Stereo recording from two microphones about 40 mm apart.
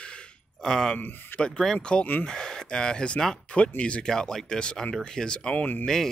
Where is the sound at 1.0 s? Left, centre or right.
Left.